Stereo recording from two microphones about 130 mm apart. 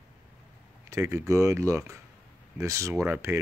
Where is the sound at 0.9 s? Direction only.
25° right (ahead or behind).